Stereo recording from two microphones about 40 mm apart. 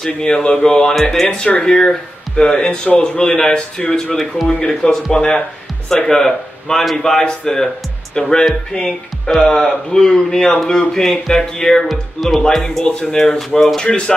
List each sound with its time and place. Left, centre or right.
0.0 s speech: centre
11.9 s speech: centre
13.7 s speech: left